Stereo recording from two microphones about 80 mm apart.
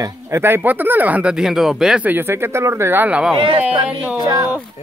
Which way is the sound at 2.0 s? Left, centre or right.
Right.